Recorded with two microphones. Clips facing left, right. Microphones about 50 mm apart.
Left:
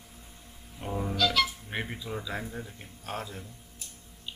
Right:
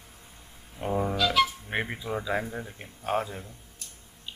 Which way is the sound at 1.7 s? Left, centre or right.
Right.